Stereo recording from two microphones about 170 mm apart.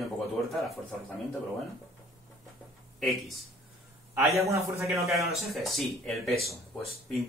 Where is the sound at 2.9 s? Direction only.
Centre (ahead or behind).